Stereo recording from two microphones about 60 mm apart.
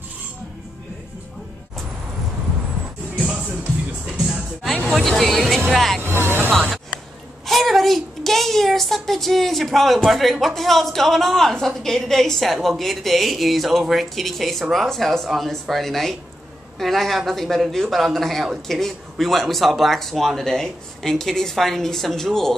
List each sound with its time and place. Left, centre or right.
3.2 s music: centre
4.6 s a sound: centre
5.7 s music: centre
6.0 s music: right
7.4 s a sound: centre
10.4 s a man's voice: centre